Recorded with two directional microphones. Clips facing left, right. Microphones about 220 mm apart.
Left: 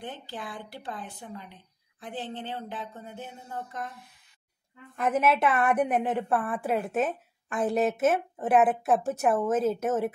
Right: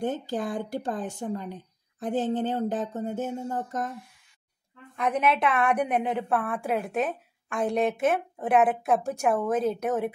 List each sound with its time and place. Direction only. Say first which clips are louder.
0.0 s a woman's voice: right 10 dB; 45° right (ahead or behind)
4.9 s a woman's voice: even; 5° left (ahead or behind)